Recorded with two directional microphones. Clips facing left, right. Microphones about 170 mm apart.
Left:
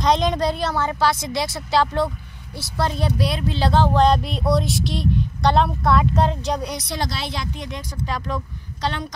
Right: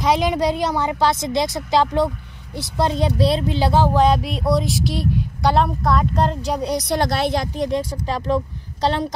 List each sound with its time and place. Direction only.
0.0 s a woman's voice: 5° right (ahead or behind); by 3.4 s 30° right (ahead or behind)
3.4 s speech: 10° right (ahead or behind)
6.6 s speech: 35° right (ahead or behind)
7.0 s speech: 55° right (ahead or behind); by 9.0 s 30° right (ahead or behind)